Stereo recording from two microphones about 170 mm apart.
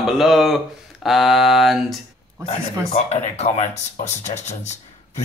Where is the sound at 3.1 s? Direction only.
40° left (ahead or behind).